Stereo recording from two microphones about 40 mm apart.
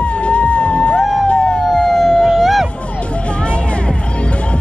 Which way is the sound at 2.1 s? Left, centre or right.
Centre.